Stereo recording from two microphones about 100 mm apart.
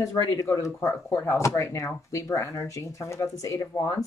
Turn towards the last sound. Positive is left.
turn(degrees=35)  # may be behind; listen again after turning